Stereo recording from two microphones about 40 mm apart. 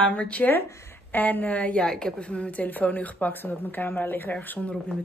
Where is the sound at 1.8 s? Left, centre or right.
Centre.